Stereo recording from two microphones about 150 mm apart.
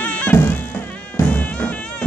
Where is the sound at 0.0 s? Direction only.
10° left (ahead or behind).